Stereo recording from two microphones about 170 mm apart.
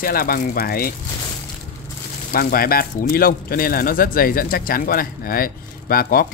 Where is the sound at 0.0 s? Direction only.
60° left (ahead or behind).